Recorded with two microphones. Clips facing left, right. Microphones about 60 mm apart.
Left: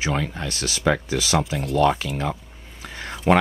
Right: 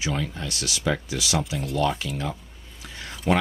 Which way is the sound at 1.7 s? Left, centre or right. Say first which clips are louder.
Left 6 dB; left.